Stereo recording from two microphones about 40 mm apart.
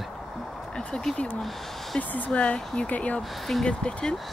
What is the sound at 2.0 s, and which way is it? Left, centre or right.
Speech, left.